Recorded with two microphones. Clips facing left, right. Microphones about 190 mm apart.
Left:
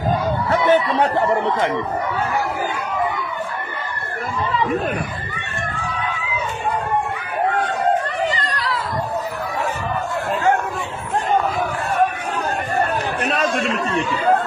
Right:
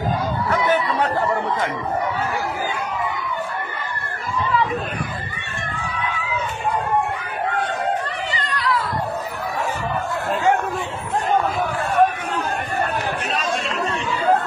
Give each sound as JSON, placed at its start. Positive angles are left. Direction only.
{"t": 0.5, "sound": "speech", "side_deg": 25}
{"t": 8.3, "sound": "chatter", "side_deg": 40}
{"t": 13.3, "sound": "chatter", "side_deg": 55}